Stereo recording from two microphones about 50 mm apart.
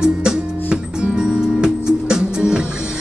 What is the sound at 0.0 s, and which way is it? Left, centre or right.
Music, centre.